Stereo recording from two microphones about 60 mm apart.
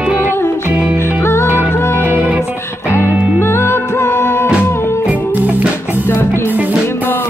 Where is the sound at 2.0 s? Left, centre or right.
Right.